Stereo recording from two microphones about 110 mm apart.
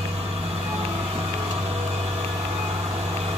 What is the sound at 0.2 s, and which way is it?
Vehicle, 60° right (ahead or behind).